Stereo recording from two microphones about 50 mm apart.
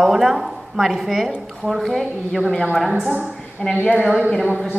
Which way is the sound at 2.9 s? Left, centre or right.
Centre.